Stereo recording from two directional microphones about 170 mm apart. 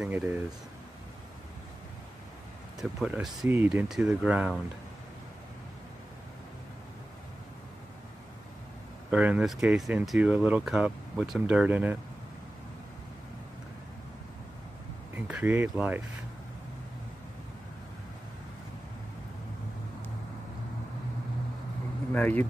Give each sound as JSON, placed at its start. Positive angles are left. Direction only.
{"t": 0.0, "sound": "speech", "side_deg": -10}
{"t": 2.8, "sound": "speech", "side_deg": 0}
{"t": 9.1, "sound": "speech", "side_deg": -5}
{"t": 15.1, "sound": "speech", "side_deg": -10}
{"t": 22.1, "sound": "speech", "side_deg": 10}